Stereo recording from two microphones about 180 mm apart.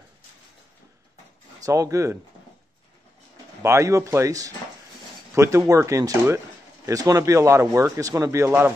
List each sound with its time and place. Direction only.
1.6 s speech: 20° right (ahead or behind)
3.6 s a man's voice: 15° right (ahead or behind)